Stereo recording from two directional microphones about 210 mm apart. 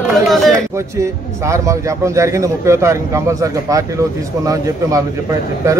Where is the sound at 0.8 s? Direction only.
15° right (ahead or behind).